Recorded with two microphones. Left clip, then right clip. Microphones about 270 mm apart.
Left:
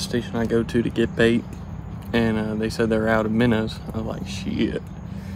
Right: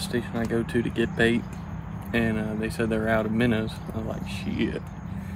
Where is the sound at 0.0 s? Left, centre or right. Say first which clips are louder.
Left 4 dB; centre.